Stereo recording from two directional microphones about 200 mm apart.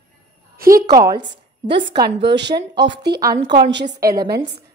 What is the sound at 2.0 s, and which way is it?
Speech, 60° right (ahead or behind).